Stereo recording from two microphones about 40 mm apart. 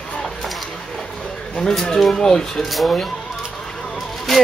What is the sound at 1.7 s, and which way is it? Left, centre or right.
Speech, centre.